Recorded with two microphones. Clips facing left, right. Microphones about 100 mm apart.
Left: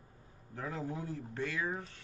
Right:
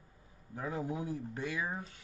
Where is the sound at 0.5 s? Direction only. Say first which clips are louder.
Right 2 dB; 10° right (ahead or behind).